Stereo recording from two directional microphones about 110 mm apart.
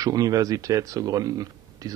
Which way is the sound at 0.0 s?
35° right (ahead or behind).